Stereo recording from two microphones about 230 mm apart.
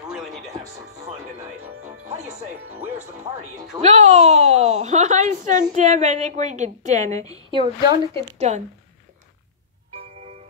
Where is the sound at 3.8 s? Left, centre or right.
Right.